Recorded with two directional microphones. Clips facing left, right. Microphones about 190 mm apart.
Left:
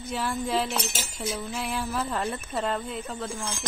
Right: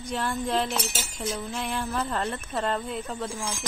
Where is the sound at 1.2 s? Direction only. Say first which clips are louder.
Even; centre (ahead or behind).